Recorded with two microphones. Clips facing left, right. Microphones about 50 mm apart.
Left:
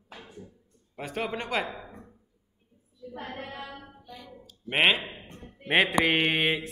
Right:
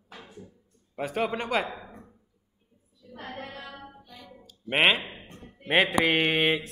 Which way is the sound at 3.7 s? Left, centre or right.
Centre.